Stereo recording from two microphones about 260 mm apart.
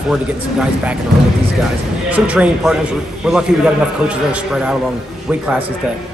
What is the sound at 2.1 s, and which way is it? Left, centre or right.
A man's voice, centre.